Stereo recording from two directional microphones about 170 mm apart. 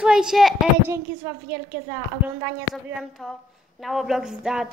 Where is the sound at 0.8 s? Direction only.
15° right (ahead or behind).